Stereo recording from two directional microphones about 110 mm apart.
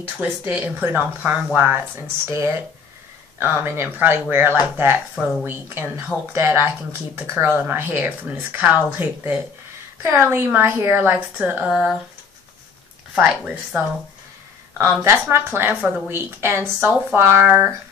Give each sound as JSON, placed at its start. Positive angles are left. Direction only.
{"t": 0.2, "sound": "speech", "side_deg": -15}
{"t": 13.1, "sound": "speech", "side_deg": -10}
{"t": 14.9, "sound": "speech", "side_deg": -20}
{"t": 15.7, "sound": "speech", "side_deg": -10}
{"t": 16.1, "sound": "speech", "side_deg": -20}